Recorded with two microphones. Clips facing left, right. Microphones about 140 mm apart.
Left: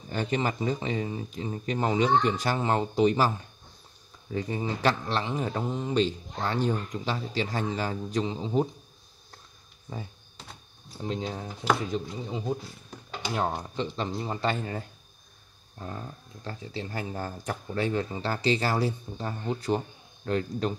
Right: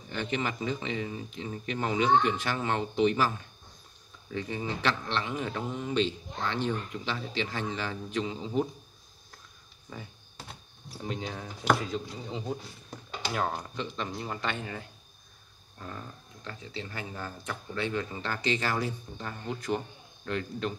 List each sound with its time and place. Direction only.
0.1 s a man's voice: 40° left (ahead or behind)
9.9 s a man's voice: 30° left (ahead or behind)
11.1 s speech: 30° left (ahead or behind)
16.4 s a man's voice: 35° left (ahead or behind)